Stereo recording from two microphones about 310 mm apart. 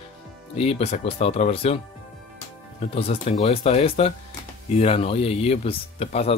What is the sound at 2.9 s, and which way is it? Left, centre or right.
Speech, centre.